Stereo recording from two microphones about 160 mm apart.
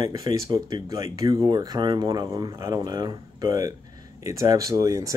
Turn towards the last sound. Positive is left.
turn(degrees=-20)  # may be behind; listen again after turning